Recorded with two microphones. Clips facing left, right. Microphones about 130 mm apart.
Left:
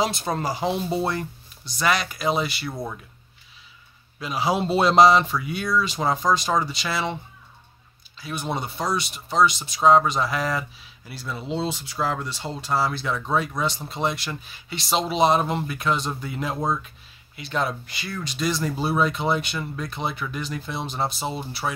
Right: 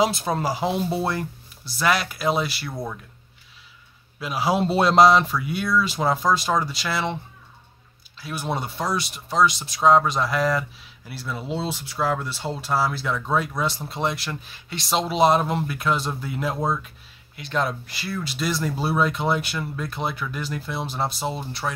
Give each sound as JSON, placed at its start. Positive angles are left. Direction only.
{"t": 0.0, "sound": "speech", "side_deg": -5}
{"t": 4.2, "sound": "speech", "side_deg": 0}
{"t": 8.2, "sound": "speech", "side_deg": 0}